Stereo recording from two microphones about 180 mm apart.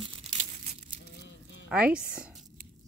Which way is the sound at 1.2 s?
85° left.